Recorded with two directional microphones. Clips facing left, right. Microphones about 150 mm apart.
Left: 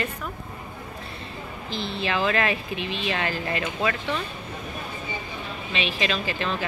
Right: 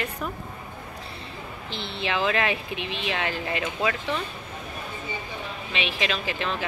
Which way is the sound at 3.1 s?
Centre (ahead or behind).